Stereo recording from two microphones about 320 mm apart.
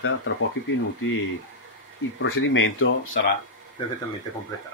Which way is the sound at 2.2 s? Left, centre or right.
Left.